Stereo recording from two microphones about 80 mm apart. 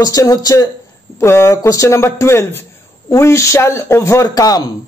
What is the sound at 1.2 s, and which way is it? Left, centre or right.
Speech, left.